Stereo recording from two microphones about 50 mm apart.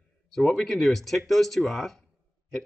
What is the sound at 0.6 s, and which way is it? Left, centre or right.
Speech, centre.